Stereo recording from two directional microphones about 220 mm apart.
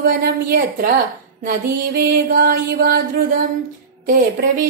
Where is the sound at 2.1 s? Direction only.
40° right (ahead or behind).